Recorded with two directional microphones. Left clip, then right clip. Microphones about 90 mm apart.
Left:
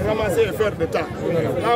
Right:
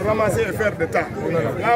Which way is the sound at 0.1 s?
15° left (ahead or behind).